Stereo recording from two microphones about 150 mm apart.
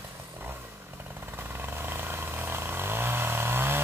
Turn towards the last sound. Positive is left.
turn(degrees=-15)  # may be behind; listen again after turning